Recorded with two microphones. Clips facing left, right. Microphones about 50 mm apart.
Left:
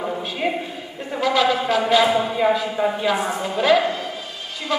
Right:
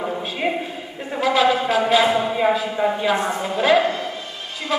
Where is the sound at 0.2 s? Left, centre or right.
Centre.